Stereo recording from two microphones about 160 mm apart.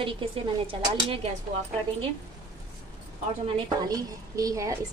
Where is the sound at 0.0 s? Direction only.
35° right (ahead or behind).